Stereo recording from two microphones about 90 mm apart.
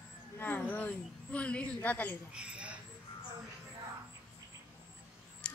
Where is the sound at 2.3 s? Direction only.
10° right (ahead or behind).